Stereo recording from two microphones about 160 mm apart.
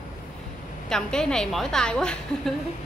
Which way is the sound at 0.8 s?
5° left (ahead or behind).